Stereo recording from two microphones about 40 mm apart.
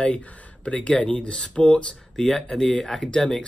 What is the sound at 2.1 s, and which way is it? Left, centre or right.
Speech, centre.